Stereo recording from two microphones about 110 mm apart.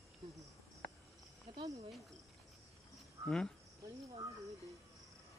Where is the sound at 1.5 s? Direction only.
45° right (ahead or behind).